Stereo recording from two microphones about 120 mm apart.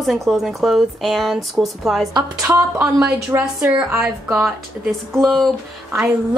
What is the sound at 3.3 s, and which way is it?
A woman's voice, 20° right (ahead or behind).